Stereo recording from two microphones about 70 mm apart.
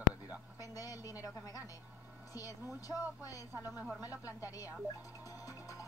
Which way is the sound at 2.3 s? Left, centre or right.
Left.